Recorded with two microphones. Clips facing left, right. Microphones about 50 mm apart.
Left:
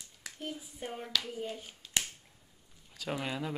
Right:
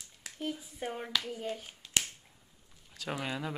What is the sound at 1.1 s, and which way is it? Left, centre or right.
Speech, right.